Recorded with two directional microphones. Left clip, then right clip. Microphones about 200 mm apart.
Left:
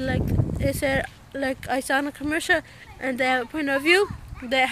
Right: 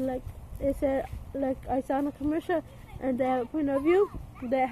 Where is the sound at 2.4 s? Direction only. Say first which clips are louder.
Left 7 dB; 5° left (ahead or behind).